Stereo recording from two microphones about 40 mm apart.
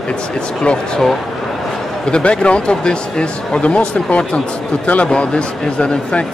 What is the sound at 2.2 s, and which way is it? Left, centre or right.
Speech, left.